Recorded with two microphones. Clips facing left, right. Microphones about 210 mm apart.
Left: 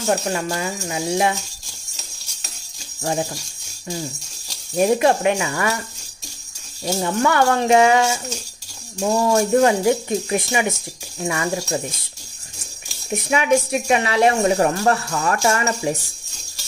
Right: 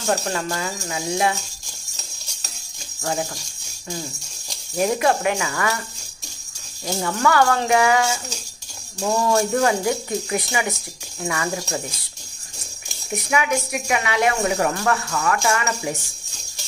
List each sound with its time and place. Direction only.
0.0 s speech: 15° left (ahead or behind)
4.7 s speech: 25° left (ahead or behind)
7.0 s speech: 25° left (ahead or behind)
9.2 s speech: 20° left (ahead or behind)
13.1 s a woman's voice: 25° left (ahead or behind)